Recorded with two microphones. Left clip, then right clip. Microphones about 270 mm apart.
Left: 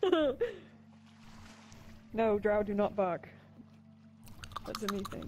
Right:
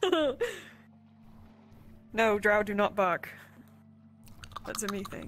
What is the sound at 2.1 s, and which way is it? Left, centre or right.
Speech, right.